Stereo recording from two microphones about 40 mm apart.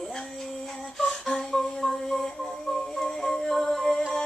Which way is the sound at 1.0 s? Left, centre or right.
Centre.